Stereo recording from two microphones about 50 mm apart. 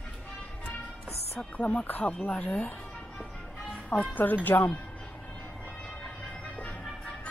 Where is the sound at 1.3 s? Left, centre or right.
Left.